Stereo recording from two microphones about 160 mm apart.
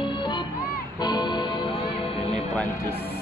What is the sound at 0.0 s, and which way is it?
Music, 30° left (ahead or behind).